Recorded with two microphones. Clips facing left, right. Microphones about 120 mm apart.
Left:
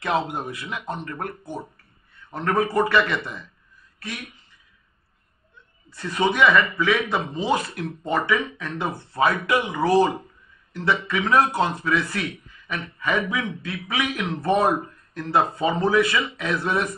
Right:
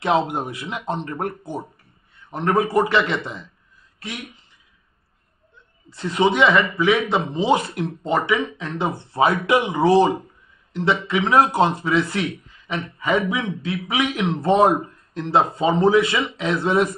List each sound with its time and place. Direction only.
0.0 s speech: 25° right (ahead or behind)
2.3 s speech: 20° right (ahead or behind)
5.9 s speech: 25° right (ahead or behind)